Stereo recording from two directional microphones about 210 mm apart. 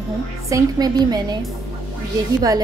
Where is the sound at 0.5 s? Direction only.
15° right (ahead or behind).